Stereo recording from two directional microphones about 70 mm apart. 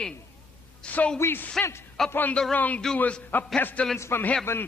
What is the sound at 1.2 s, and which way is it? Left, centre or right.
Speech, left.